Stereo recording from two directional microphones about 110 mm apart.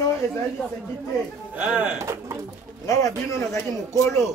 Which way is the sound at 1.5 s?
10° right (ahead or behind).